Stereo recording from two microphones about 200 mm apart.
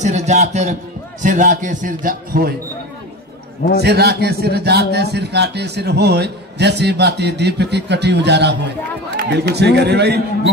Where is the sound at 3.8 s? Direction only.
55° right (ahead or behind).